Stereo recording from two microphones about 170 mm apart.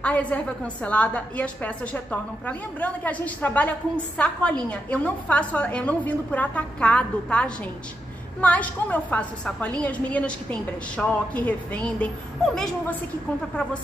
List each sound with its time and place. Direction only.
0.0 s a woman's voice: 10° left (ahead or behind)